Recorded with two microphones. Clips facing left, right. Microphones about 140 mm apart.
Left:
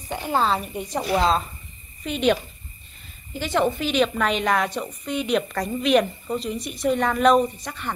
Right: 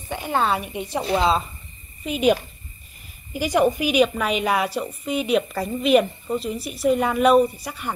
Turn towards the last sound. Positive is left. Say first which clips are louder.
# right 4 dB
turn(degrees=-10)  # may be behind; listen again after turning